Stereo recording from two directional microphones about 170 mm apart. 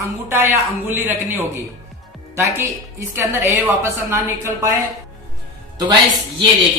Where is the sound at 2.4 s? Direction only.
15° right (ahead or behind).